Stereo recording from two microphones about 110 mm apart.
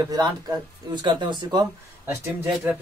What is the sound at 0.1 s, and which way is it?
Speech, 35° right (ahead or behind).